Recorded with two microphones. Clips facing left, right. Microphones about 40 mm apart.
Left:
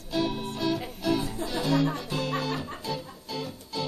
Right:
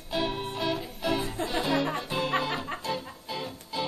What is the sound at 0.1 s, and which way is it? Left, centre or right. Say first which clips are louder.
Music: left 1 dB; centre.